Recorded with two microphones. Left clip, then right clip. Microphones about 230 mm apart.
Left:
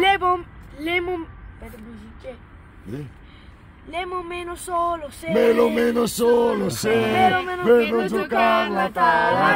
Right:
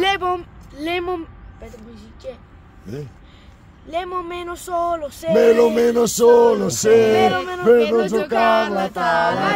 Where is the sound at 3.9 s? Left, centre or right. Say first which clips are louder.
Right 3 dB; right.